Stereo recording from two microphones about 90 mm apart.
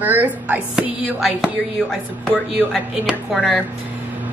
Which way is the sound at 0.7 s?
5° right (ahead or behind).